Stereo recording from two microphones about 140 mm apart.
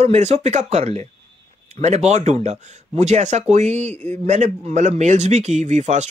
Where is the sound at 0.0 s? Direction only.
50° right (ahead or behind).